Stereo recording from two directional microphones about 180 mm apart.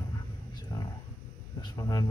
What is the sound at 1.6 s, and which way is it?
Speech, 20° left (ahead or behind).